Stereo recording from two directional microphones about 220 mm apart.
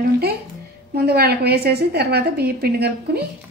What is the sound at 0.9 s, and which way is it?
A woman's voice, 45° right (ahead or behind).